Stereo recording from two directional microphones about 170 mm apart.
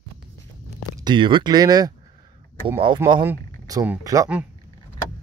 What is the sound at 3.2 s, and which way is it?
Speech, 15° right (ahead or behind).